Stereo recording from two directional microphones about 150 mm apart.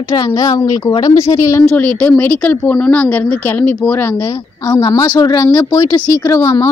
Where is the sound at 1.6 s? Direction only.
10° left (ahead or behind).